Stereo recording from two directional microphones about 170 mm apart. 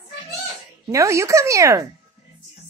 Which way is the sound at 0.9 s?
15° right (ahead or behind).